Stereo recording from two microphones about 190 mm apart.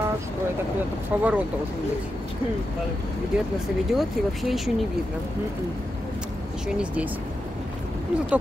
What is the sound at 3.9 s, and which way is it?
Speech, centre (ahead or behind).